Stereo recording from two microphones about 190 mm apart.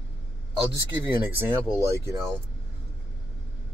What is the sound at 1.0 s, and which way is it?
Speech, 10° right (ahead or behind).